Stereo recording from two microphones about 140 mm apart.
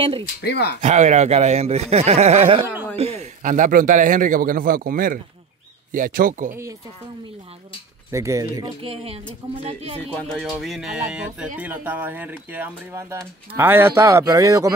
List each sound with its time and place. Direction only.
0.7 s speech: 55° right (ahead or behind)
2.6 s speech: 15° right (ahead or behind)
3.0 s speech: 45° right (ahead or behind)
3.4 s a man's voice: 65° right (ahead or behind)
8.1 s speech: 20° right (ahead or behind)
8.8 s speech: 45° right (ahead or behind)
10.1 s speech: 5° left (ahead or behind); by 14.7 s 25° right (ahead or behind)